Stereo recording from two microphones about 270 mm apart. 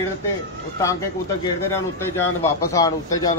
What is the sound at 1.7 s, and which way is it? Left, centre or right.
A man's voice, centre.